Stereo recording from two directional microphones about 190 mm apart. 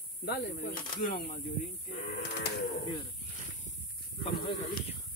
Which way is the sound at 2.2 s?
60° left (ahead or behind).